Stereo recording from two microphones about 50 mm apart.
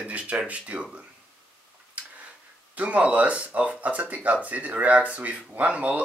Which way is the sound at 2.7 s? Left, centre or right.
Right.